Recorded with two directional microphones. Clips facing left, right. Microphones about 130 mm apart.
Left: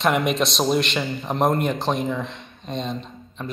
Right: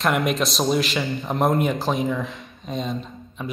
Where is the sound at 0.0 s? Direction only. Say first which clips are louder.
Left 1 dB; centre (ahead or behind).